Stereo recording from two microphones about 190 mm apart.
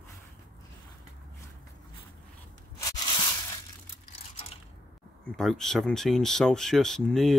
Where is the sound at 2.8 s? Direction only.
20° left (ahead or behind).